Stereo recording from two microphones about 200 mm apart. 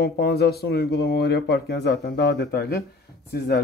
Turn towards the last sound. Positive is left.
turn(degrees=50)  # may be behind; listen again after turning